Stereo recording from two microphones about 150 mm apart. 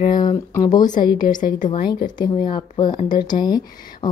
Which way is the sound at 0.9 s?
65° left (ahead or behind).